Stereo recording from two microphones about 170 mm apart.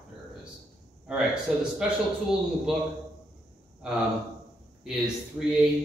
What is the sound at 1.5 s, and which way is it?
Speech, centre (ahead or behind).